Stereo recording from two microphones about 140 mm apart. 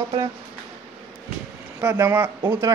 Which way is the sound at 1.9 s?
15° right (ahead or behind).